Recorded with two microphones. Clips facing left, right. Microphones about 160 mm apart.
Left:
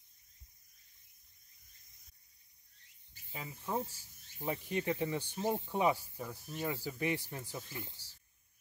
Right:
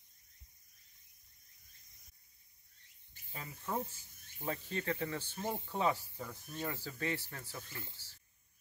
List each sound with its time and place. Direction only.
3.3 s speech: 10° left (ahead or behind)